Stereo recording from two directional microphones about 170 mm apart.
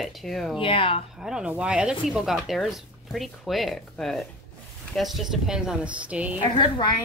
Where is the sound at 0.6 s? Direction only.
30° left (ahead or behind).